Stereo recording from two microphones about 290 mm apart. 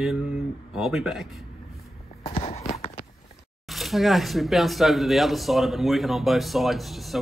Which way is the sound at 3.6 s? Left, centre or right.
Centre.